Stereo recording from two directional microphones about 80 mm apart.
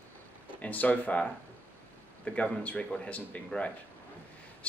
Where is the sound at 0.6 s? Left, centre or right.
Centre.